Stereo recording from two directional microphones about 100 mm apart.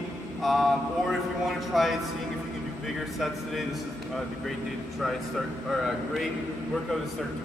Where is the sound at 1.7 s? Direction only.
Centre (ahead or behind).